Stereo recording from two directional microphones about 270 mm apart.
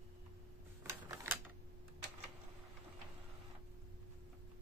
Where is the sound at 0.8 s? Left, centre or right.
Centre.